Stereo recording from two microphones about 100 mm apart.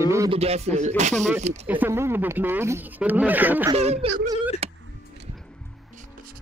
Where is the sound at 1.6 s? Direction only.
20° right (ahead or behind).